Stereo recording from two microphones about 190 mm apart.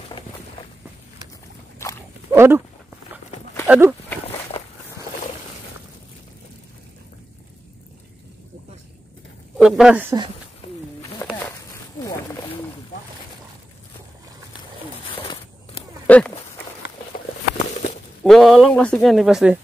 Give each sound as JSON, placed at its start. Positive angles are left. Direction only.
{"t": 1.8, "sound": "dog", "side_deg": 15}
{"t": 2.3, "sound": "speech", "side_deg": -15}
{"t": 3.6, "sound": "speech", "side_deg": -10}
{"t": 9.6, "sound": "speech", "side_deg": 0}
{"t": 11.3, "sound": "a sound", "side_deg": 15}
{"t": 16.1, "sound": "walk", "side_deg": 5}
{"t": 18.2, "sound": "speech", "side_deg": 0}